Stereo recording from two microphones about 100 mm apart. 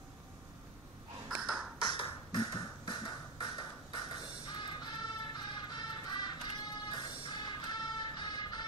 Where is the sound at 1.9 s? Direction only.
50° left (ahead or behind).